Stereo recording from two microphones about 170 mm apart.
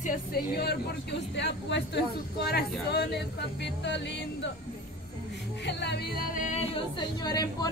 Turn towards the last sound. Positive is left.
turn(degrees=25)  # may be behind; listen again after turning